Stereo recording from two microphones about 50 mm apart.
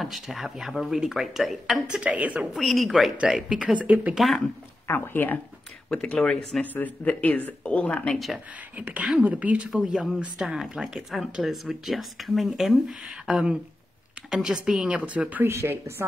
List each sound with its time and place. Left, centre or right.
0.0 s speech: centre
1.9 s a woman's voice: right
2.5 s speech: centre
3.3 s speech: centre
3.7 s speech: right
4.8 s speech: left
6.1 s speech: centre
6.6 s speech: left
8.1 s speech: centre
8.7 s a woman's voice: right
15.4 s speech: right